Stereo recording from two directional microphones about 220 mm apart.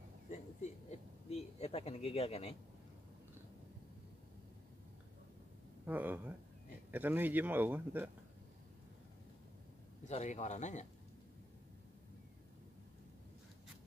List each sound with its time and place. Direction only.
0.3 s a sound: 30° left (ahead or behind)
5.9 s speech: 10° right (ahead or behind)
10.0 s speech: 30° left (ahead or behind)